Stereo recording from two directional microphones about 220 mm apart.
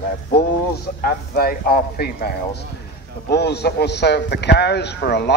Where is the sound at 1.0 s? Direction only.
45° left (ahead or behind).